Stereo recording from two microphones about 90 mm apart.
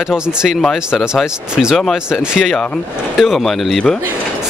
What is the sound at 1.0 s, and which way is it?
Speech, 10° right (ahead or behind).